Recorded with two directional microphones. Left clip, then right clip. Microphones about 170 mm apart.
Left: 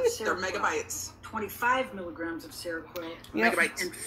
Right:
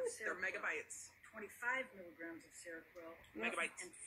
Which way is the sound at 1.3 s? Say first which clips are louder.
Left 15 dB; 10° left (ahead or behind).